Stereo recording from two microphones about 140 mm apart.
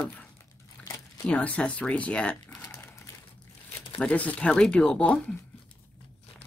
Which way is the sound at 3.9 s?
10° left (ahead or behind).